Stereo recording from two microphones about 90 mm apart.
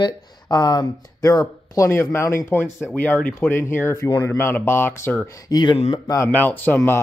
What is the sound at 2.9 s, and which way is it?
Speech, 15° left (ahead or behind).